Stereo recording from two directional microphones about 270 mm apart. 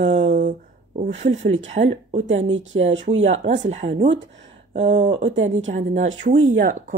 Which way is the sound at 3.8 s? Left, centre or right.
Right.